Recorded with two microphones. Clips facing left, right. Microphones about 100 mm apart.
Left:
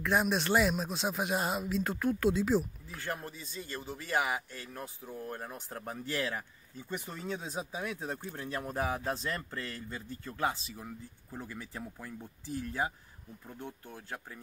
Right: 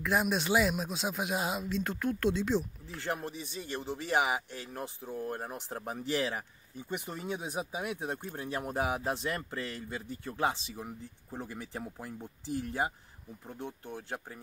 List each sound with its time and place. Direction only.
0.0 s speech: centre (ahead or behind)
3.0 s speech: 20° right (ahead or behind)